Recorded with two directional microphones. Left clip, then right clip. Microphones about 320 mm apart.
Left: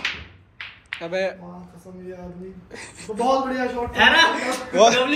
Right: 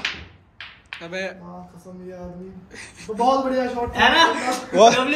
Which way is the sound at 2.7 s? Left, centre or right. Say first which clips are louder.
Right 1 dB; centre.